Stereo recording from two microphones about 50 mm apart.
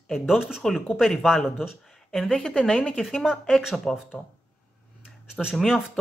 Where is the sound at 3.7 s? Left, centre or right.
Centre.